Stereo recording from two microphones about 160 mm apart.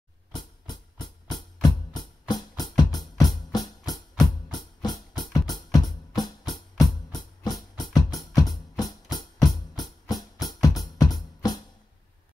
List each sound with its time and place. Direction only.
0.3 s music: 25° left (ahead or behind)